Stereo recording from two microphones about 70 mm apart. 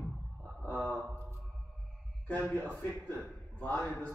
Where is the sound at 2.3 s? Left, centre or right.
Left.